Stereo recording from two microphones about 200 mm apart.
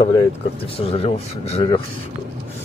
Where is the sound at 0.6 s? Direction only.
30° left (ahead or behind).